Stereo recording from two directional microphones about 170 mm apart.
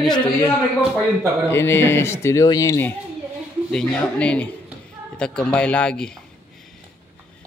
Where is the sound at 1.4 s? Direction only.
15° left (ahead or behind).